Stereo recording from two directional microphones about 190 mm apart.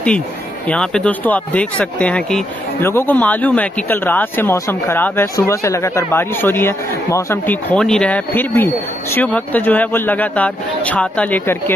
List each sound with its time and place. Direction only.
0.7 s speech: 5° left (ahead or behind)
7.7 s speech: 5° left (ahead or behind)